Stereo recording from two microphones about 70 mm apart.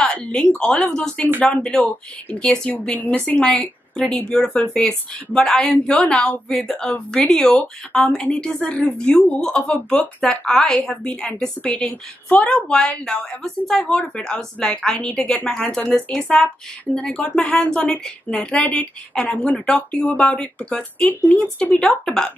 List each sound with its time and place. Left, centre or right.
0.3 s a woman's voice: centre